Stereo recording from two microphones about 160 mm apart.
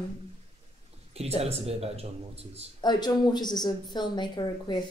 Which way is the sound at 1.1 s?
40° right (ahead or behind).